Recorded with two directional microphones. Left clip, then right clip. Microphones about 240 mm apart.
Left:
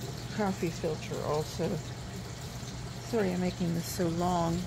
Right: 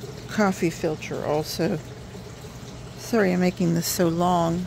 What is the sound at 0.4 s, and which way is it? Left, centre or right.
Speech, right.